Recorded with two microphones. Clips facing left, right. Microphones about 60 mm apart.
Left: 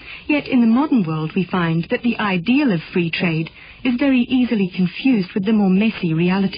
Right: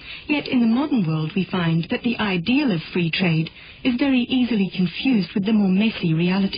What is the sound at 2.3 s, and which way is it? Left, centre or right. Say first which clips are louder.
Speech: left 4 dB; left.